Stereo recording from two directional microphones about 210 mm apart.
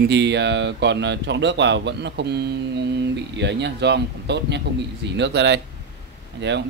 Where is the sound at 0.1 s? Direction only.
55° right (ahead or behind).